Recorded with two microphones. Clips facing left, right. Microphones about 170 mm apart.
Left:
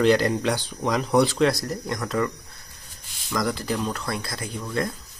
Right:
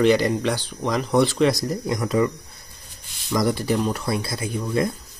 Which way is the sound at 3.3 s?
20° right (ahead or behind).